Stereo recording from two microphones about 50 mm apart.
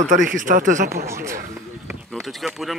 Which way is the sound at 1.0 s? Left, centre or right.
Right.